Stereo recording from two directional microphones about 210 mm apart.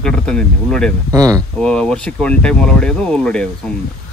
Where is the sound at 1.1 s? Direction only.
15° right (ahead or behind).